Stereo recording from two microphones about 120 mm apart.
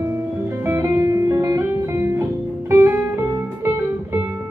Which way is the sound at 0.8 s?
25° right (ahead or behind).